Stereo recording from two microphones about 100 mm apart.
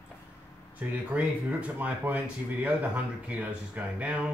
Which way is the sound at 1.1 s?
15° right (ahead or behind).